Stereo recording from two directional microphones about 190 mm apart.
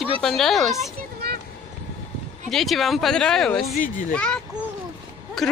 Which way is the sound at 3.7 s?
45° left (ahead or behind).